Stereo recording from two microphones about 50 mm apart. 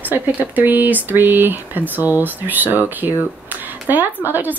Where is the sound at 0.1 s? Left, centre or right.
Right.